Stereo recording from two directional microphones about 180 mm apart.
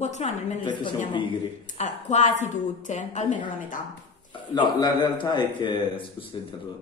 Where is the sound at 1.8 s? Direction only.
40° left (ahead or behind).